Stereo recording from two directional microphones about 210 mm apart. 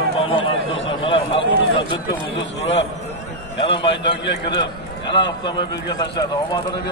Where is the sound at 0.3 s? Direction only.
25° left (ahead or behind).